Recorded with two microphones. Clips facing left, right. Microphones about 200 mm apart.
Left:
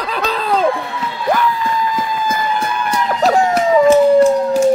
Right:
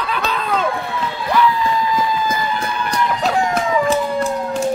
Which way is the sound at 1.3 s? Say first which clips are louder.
Right 1 dB; 50° left (ahead or behind).